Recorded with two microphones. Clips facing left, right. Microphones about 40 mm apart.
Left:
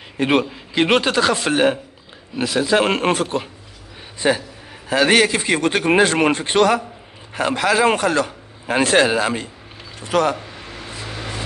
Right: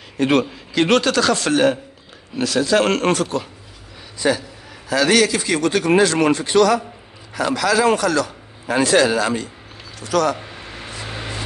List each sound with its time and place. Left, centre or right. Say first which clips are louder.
0.2 s a man's voice: right 1 dB; centre
11.0 s vehicle: right 1 dB; centre